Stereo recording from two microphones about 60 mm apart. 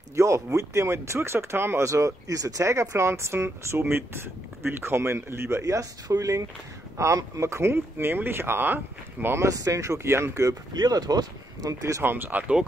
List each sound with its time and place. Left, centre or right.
0.1 s speech: right
1.9 s speech: right
5.6 s speech: right
9.4 s speech: right
10.9 s speech: right
12.0 s speech: right